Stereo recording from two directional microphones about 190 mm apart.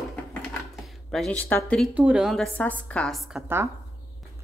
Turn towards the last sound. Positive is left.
turn(degrees=0)  # may be behind; listen again after turning